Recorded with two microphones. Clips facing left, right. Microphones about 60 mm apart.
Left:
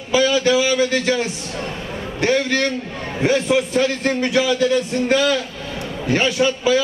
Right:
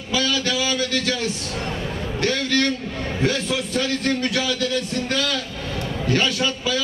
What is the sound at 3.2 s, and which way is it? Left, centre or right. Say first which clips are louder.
A man's voice: left 7 dB; left.